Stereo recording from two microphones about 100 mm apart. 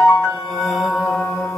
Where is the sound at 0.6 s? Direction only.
Centre (ahead or behind).